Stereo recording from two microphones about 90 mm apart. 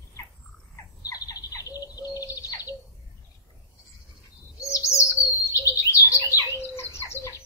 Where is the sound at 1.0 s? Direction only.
40° left (ahead or behind).